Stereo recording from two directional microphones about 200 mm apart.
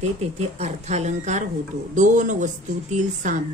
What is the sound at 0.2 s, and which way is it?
Speech, 35° right (ahead or behind).